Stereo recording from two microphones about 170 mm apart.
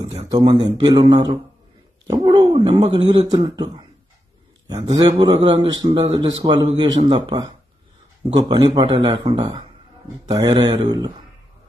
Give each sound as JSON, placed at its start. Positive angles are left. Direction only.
{"t": 0.3, "sound": "speech", "side_deg": -25}
{"t": 6.1, "sound": "speech", "side_deg": -25}